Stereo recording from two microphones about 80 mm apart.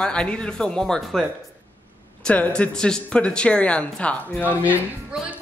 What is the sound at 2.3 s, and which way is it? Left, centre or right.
A man's voice, centre.